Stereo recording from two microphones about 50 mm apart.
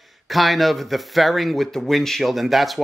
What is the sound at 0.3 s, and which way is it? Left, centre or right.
Speech, centre.